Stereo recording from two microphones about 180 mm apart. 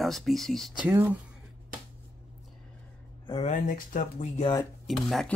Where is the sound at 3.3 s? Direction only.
40° left (ahead or behind).